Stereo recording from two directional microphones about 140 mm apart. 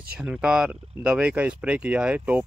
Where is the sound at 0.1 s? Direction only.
10° right (ahead or behind).